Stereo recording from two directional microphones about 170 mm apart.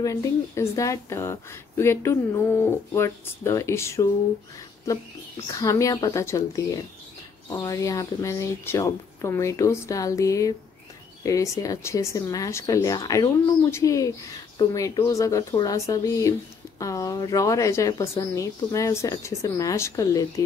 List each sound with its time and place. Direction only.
0.0 s speech: 20° left (ahead or behind)
5.5 s speech: 20° left (ahead or behind)